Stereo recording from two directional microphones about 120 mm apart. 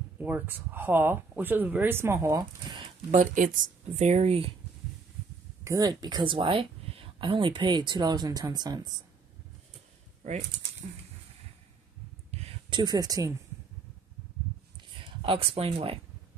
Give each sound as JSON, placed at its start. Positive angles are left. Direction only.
{"t": 0.2, "sound": "speech", "side_deg": -15}
{"t": 3.1, "sound": "speech", "side_deg": -90}
{"t": 5.6, "sound": "speech", "side_deg": -30}
{"t": 12.3, "sound": "a sound", "side_deg": -55}
{"t": 15.0, "sound": "speech", "side_deg": -50}